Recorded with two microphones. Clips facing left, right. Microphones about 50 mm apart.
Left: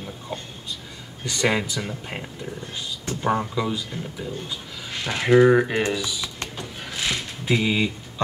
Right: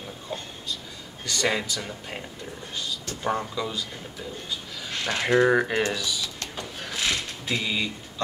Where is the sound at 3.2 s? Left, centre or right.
Centre.